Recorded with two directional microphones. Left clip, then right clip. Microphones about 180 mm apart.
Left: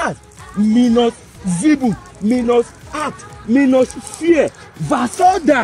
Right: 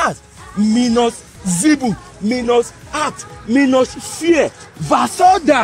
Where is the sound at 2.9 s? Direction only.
50° left (ahead or behind).